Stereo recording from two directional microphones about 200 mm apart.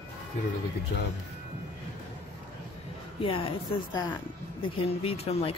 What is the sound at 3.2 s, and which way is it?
Speech, 25° left (ahead or behind).